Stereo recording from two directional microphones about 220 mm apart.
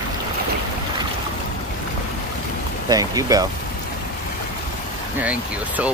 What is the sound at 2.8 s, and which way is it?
Speech, 15° right (ahead or behind).